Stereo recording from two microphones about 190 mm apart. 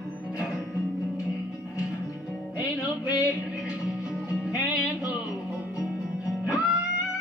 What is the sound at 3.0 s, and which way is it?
Music, 20° left (ahead or behind).